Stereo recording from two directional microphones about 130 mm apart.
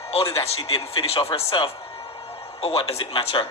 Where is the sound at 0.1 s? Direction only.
45° left (ahead or behind).